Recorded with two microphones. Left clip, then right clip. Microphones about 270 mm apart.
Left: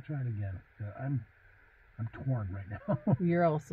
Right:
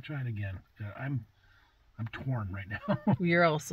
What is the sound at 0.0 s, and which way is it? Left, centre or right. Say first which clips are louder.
Speech: right 2 dB; right.